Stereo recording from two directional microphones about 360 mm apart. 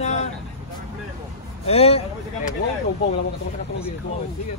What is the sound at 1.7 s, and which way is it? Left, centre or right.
Speech, centre.